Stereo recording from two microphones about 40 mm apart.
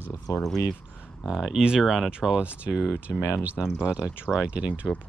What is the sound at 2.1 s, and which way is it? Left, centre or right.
Speech, right.